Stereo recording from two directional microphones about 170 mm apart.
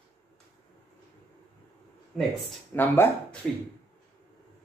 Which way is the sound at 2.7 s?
10° left (ahead or behind).